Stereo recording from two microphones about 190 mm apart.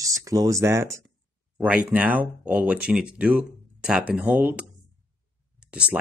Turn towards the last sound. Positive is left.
turn(degrees=-5)  # may be behind; listen again after turning